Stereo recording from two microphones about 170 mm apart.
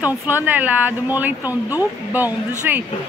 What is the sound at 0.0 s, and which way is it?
Speech, 10° right (ahead or behind).